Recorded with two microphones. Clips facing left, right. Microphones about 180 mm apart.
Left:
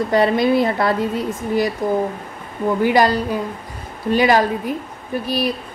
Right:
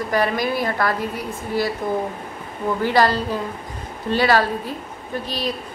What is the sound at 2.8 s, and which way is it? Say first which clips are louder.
Speech: left 2 dB; 15° left (ahead or behind).